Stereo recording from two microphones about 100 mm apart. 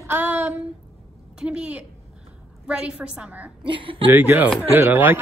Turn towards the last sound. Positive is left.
turn(degrees=-20)  # may be behind; listen again after turning